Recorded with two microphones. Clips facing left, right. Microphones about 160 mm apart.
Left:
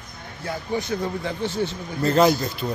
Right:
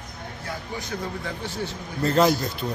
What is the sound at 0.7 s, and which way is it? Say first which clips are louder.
Speech: left 7 dB; 20° left (ahead or behind).